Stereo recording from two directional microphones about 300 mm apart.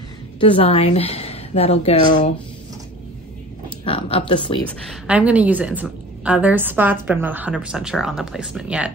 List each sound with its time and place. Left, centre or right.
0.4 s a woman's voice: centre
3.8 s speech: centre
4.8 s a woman's voice: centre